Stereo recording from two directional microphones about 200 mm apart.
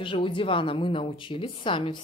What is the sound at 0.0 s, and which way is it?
A woman's voice, 25° left (ahead or behind).